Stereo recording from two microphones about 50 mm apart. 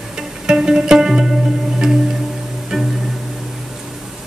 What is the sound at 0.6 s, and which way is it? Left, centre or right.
Music, centre.